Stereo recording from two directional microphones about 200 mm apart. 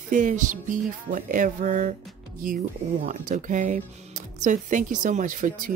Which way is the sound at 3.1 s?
40° right (ahead or behind).